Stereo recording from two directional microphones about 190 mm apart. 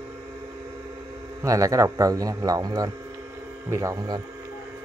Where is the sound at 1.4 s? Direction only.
15° right (ahead or behind).